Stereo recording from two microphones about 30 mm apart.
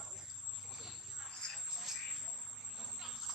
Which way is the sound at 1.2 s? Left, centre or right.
Centre.